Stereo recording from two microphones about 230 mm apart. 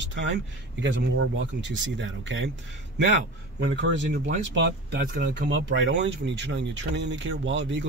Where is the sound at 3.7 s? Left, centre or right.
Right.